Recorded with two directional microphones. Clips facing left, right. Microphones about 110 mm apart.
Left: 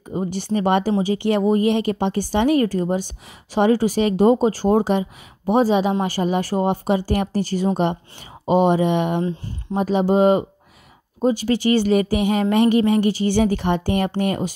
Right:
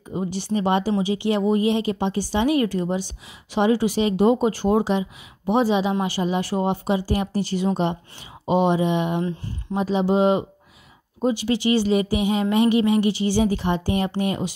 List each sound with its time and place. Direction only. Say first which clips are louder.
0.3 s speech: left 2 dB; 50° left (ahead or behind)